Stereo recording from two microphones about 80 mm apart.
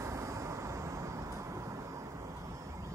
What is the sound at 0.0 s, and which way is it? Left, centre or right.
Vehicle, right.